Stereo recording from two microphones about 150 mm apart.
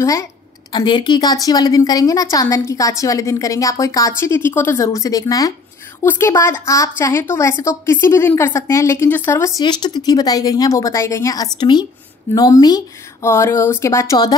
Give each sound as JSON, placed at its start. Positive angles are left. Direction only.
{"t": 0.0, "sound": "a woman's voice", "side_deg": 20}
{"t": 9.6, "sound": "a woman's voice", "side_deg": 30}